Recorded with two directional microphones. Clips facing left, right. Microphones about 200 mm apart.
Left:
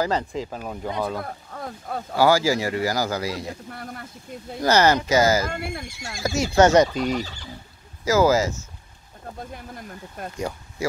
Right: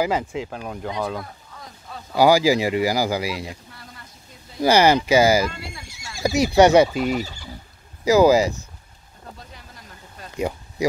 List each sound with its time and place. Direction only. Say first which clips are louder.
0.0 s speech: right 1 dB; 5° right (ahead or behind)
1.2 s speech: left 7 dB; 55° left (ahead or behind)
2.1 s speech: right 3 dB; 15° right (ahead or behind)
3.6 s speech: left 9 dB; 55° left (ahead or behind)
4.6 s speech: right 2 dB; 10° right (ahead or behind)
5.5 s speech: left 7 dB; 60° left (ahead or behind)
6.2 s speech: right 3 dB; 15° right (ahead or behind)
9.4 s a sound: left 8 dB; 50° left (ahead or behind)
10.3 s speech: right 7 dB; 15° right (ahead or behind)